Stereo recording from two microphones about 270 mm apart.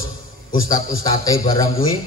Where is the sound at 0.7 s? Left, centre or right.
Centre.